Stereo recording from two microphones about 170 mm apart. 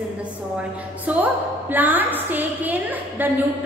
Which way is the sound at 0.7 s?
10° right (ahead or behind).